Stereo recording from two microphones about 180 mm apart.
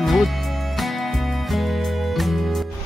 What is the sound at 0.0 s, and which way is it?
Music, centre (ahead or behind).